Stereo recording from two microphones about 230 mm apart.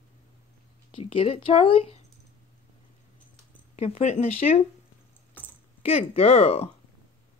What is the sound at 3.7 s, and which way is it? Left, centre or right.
Speech, left.